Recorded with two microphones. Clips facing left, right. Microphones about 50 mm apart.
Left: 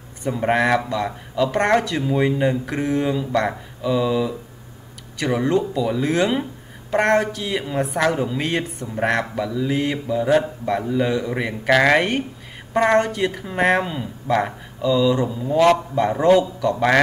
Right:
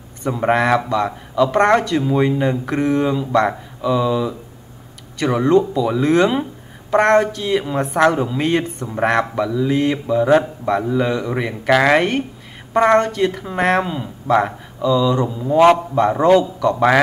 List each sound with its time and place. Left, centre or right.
0.3 s speech: centre
10.9 s speech: centre
15.2 s a man's voice: centre
15.6 s a man's voice: centre
16.3 s speech: centre